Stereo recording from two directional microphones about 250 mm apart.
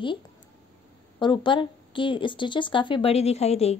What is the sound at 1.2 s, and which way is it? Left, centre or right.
Speech, centre.